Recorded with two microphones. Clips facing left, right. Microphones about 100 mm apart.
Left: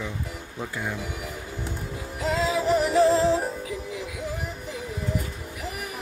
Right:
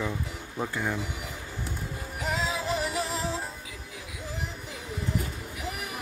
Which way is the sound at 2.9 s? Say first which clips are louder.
Left 12 dB; 30° left (ahead or behind).